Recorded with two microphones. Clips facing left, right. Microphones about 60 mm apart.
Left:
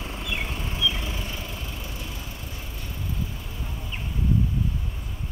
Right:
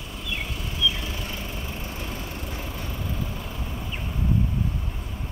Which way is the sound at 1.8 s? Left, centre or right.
Right.